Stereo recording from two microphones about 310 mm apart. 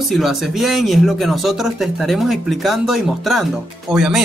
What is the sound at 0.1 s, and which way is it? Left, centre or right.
Speech, centre.